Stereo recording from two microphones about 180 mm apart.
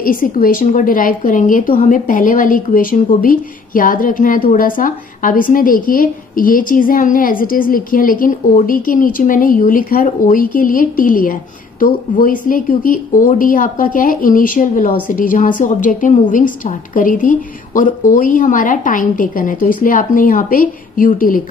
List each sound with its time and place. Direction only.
0.0 s a woman's voice: 50° left (ahead or behind)